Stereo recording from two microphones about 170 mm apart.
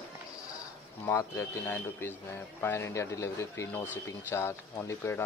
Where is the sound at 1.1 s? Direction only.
15° left (ahead or behind).